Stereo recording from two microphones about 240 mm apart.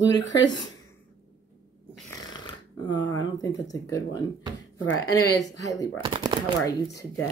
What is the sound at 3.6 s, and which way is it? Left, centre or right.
Speech, centre.